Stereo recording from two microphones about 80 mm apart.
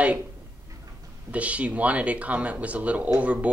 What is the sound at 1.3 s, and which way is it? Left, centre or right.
Speech, centre.